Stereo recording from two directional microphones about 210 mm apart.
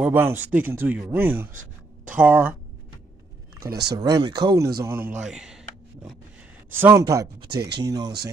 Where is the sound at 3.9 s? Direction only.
20° right (ahead or behind).